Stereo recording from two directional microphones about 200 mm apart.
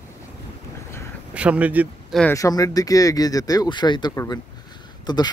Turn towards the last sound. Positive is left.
turn(degrees=20)  # may be behind; listen again after turning